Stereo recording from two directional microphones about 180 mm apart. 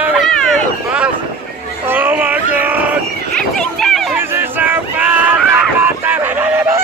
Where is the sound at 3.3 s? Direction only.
5° left (ahead or behind).